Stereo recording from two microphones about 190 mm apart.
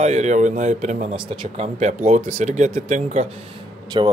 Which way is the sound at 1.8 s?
35° right (ahead or behind).